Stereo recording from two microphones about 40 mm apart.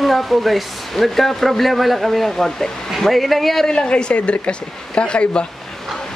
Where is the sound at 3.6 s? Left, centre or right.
Left.